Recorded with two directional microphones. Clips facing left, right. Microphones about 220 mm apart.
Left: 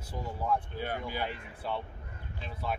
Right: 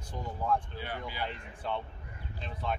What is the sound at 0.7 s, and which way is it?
Speech, 50° left (ahead or behind).